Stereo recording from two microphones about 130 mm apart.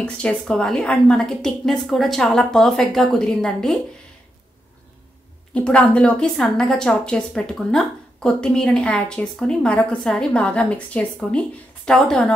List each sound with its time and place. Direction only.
0.0 s a woman's voice: 10° left (ahead or behind)
5.5 s a woman's voice: 10° left (ahead or behind)